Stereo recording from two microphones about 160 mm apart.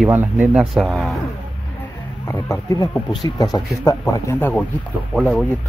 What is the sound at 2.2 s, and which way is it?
Speech, 15° left (ahead or behind).